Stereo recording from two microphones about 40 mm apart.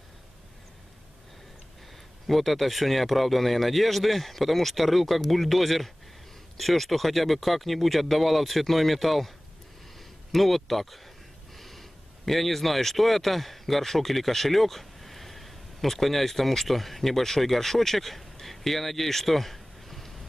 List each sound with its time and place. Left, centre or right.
2.2 s speech: centre
10.3 s speech: centre
11.5 s a sound: centre
12.3 s speech: centre